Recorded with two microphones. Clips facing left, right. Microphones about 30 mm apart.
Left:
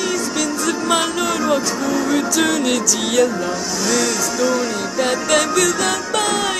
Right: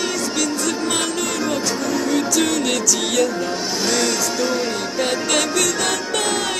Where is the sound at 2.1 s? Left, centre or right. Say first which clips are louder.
Left 1 dB; centre.